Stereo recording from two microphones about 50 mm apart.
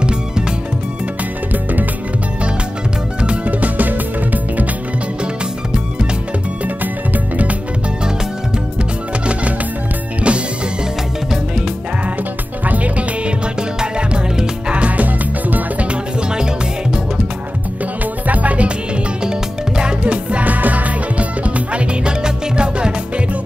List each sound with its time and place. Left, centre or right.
1.5 s music: right
3.2 s music: right
10.2 s music: right
12.6 s music: right
13.6 s music: centre
18.2 s music: right
19.8 s music: right